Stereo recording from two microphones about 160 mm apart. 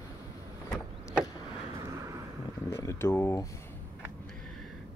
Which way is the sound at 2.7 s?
15° left (ahead or behind).